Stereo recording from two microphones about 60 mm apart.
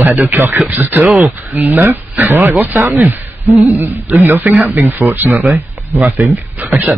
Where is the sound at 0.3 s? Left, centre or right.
Right.